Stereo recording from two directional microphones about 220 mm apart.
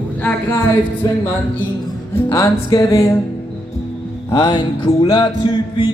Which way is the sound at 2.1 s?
10° left (ahead or behind).